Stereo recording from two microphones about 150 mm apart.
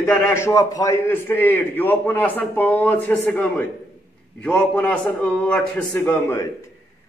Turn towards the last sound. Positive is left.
turn(degrees=15)  # may be behind; listen again after turning